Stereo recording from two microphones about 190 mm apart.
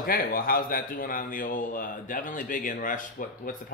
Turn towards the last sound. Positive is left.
turn(degrees=45)  # may be behind; listen again after turning